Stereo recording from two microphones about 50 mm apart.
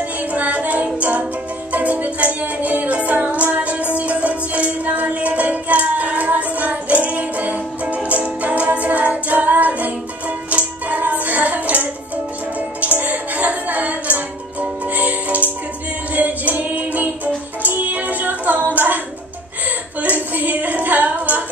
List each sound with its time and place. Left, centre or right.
0.2 s music: right
20.0 s female singing: right